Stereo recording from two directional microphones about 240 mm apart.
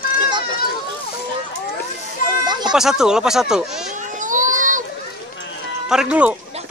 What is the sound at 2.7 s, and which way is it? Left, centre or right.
Speech, centre.